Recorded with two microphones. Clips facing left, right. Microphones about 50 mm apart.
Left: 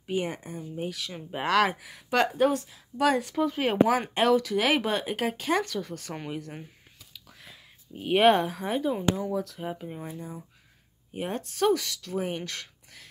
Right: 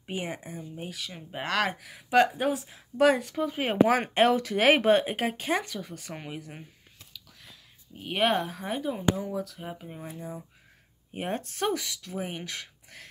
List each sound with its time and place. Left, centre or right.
0.0 s speech: centre
2.7 s speech: right
3.2 s speech: centre
3.8 s speech: right; by 6.6 s centre
7.4 s speech: centre
11.1 s speech: right; by 12.6 s centre